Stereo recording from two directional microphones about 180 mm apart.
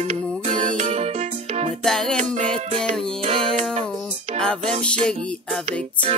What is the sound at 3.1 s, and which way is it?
Music, 30° right (ahead or behind).